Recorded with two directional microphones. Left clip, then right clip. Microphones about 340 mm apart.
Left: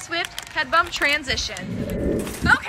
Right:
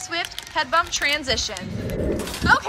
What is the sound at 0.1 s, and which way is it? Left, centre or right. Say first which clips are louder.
A woman's voice: even; centre.